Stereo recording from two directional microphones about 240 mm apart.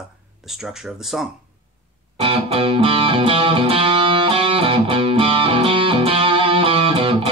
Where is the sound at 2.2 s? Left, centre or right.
Right.